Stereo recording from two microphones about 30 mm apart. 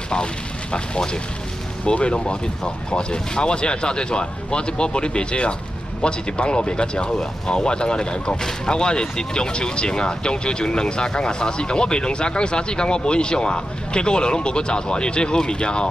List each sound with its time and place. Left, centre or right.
0.1 s speech: left
2.0 s speech: left
2.2 s speech: left